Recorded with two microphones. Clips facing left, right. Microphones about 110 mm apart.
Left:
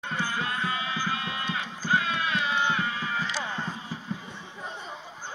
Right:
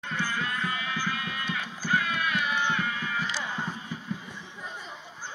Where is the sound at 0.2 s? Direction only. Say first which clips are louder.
Left 1 dB; 25° left (ahead or behind).